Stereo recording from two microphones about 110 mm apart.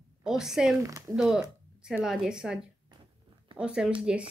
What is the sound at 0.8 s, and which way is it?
Speech, 30° right (ahead or behind).